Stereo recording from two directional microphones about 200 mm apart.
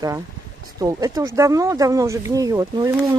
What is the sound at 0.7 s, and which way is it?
Speech, 15° right (ahead or behind).